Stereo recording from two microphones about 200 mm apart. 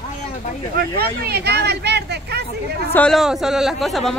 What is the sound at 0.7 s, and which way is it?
Speech, 50° right (ahead or behind).